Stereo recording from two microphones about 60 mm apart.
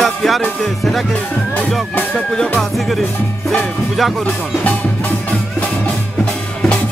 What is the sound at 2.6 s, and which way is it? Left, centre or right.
Speech, centre.